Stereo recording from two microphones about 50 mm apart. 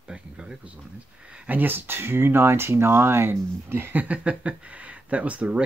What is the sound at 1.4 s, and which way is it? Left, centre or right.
Speech, right.